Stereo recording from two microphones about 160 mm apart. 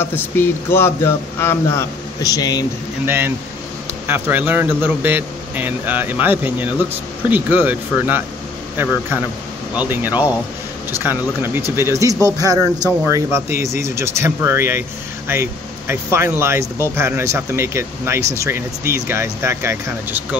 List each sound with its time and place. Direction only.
0.0 s a man's voice: 15° left (ahead or behind)
3.1 s speech: 15° right (ahead or behind)
9.8 s speech: 10° right (ahead or behind)